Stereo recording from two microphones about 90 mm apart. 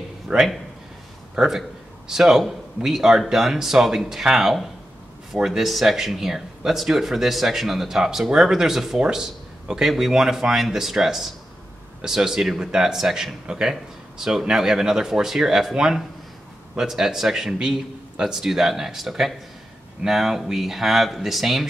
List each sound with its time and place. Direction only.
0.3 s speech: 5° right (ahead or behind)